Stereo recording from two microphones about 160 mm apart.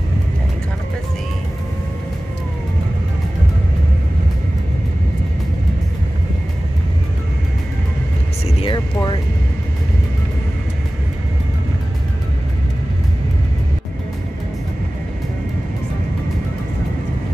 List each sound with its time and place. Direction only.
8.5 s music: 35° left (ahead or behind)